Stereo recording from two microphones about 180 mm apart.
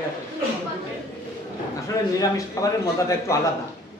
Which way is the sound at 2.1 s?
15° left (ahead or behind).